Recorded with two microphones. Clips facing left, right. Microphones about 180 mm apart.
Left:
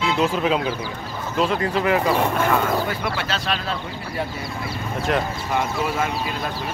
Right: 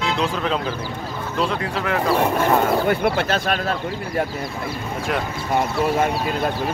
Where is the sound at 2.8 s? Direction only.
55° right (ahead or behind).